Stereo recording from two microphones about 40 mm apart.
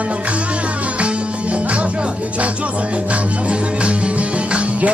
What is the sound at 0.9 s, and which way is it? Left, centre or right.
Music, right.